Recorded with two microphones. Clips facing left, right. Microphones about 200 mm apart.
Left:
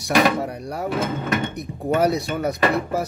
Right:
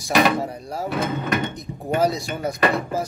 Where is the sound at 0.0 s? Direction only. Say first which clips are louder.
Even; 65° left (ahead or behind).